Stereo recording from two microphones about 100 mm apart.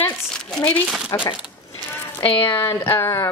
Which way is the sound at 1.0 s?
45° left (ahead or behind).